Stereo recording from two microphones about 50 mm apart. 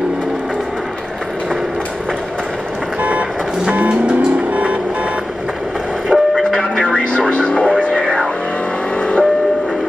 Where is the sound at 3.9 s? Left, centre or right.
Centre.